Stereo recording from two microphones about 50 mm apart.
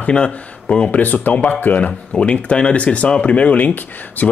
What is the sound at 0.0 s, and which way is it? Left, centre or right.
Speech, left.